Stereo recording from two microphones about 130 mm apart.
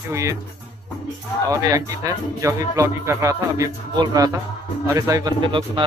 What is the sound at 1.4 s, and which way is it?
Speech, 25° right (ahead or behind).